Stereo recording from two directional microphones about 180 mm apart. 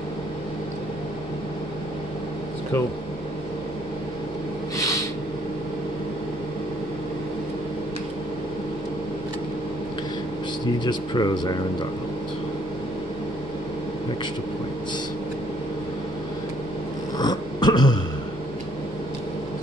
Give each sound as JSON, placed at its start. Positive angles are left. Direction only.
{"t": 4.7, "sound": "a sound", "side_deg": 20}
{"t": 10.8, "sound": "speech", "side_deg": 25}
{"t": 17.2, "sound": "cat", "side_deg": 20}